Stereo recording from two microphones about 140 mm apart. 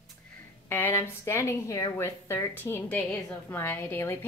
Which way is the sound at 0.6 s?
15° left (ahead or behind).